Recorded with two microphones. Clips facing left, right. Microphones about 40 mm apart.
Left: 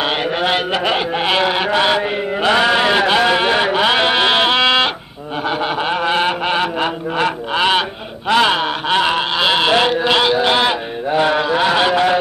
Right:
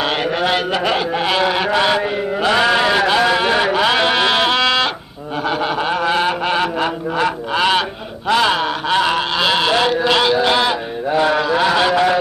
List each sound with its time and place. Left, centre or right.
0.0 s a man's voice: centre
2.5 s a sound: centre
8.3 s a man's voice: centre